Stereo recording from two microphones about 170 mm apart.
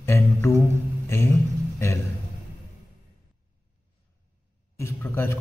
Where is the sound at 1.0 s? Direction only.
15° left (ahead or behind).